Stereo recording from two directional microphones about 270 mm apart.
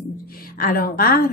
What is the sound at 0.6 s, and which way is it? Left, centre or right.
Speech, left.